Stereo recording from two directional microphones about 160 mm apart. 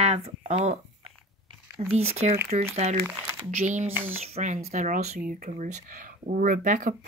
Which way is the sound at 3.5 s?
50° right (ahead or behind).